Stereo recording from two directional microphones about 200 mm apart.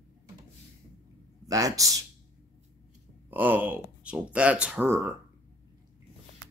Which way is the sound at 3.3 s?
10° right (ahead or behind).